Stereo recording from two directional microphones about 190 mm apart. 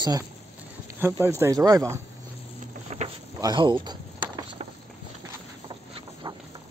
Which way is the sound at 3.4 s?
25° right (ahead or behind).